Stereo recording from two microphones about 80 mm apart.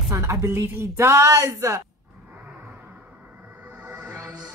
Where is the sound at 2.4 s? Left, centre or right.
Right.